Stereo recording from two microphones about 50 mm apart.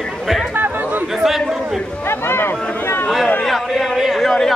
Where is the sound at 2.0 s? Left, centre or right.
Left.